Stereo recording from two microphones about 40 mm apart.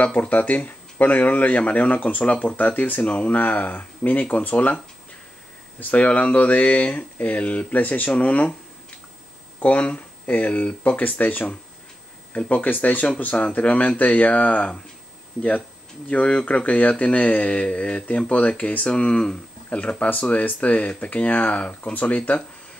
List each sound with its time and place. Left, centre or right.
0.0 s speech: left
5.8 s speech: left
9.6 s speech: left
16.4 s speech: left